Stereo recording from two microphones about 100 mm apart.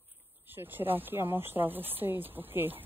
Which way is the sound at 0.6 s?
20° right (ahead or behind).